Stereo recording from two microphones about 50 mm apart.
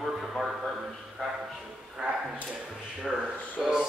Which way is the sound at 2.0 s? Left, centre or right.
Centre.